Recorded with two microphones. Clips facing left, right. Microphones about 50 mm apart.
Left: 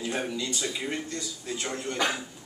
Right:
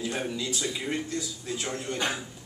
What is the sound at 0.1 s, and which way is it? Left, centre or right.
A man's voice, centre.